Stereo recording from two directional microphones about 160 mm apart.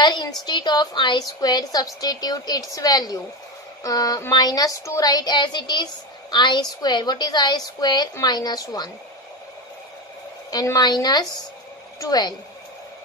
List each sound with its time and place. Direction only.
0.0 s a woman's voice: 25° left (ahead or behind)
10.5 s a woman's voice: 25° left (ahead or behind)